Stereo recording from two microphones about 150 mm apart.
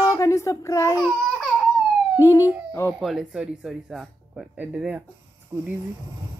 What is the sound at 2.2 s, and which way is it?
Speech, 20° left (ahead or behind).